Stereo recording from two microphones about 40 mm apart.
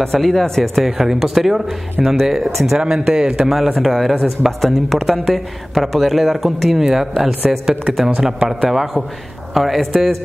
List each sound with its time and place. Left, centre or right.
0.0 s speech: centre
0.8 s speech: centre
3.1 s speech: centre
8.4 s speech: right
8.6 s speech: centre